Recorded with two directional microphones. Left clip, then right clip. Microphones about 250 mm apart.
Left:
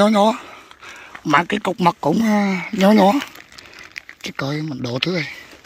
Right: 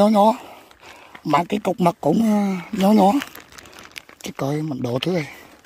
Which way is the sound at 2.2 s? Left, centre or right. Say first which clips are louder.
Left 3 dB; centre.